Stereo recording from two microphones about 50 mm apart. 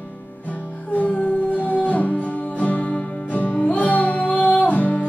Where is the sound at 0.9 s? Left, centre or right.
Left.